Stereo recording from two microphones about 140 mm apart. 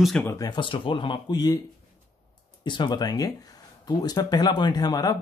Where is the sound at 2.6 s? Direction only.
35° left (ahead or behind).